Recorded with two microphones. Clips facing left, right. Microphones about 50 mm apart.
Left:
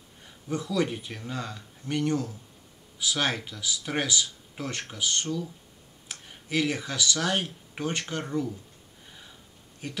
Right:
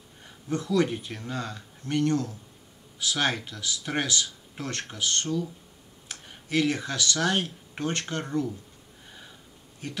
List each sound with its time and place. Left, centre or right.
0.7 s speech: centre
2.0 s speech: centre